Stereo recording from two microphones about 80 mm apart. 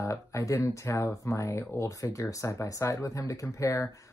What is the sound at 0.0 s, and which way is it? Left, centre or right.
Speech, left.